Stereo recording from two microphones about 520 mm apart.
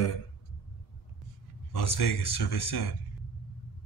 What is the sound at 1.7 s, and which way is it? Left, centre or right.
Speech, left.